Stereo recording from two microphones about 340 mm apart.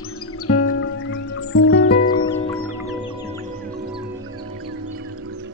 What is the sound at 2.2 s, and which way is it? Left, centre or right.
Music, centre.